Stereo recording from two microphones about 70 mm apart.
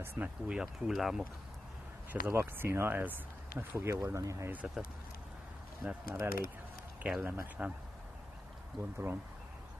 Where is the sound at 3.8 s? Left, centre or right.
Right.